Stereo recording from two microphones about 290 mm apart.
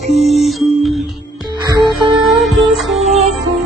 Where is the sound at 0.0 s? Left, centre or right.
Right.